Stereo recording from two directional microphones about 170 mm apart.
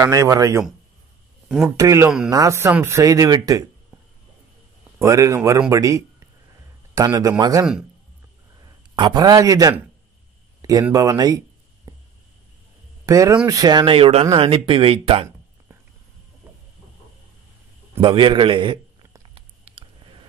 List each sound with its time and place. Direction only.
0.0 s speech: 20° right (ahead or behind)
1.8 s speech: 20° right (ahead or behind)
5.0 s speech: 20° right (ahead or behind)
8.9 s speech: 25° right (ahead or behind)
10.6 s a sound: 20° right (ahead or behind)
13.0 s speech: 20° right (ahead or behind)
18.0 s a sound: 30° right (ahead or behind)